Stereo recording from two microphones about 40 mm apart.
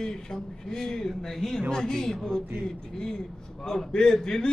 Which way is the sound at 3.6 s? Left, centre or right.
Centre.